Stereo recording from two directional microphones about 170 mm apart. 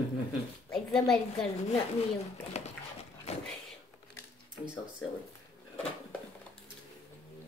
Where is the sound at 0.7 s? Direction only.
5° left (ahead or behind).